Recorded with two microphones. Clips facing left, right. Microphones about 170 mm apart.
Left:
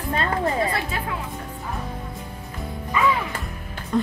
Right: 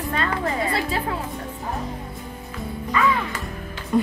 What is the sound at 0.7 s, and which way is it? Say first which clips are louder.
Music: right 3 dB; 30° right (ahead or behind).